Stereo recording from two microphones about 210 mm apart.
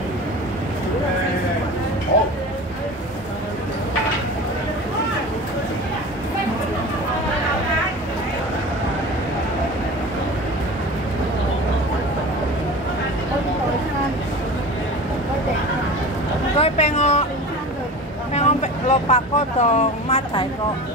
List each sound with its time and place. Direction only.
16.5 s boat: 30° left (ahead or behind)
18.3 s vehicle: 30° left (ahead or behind)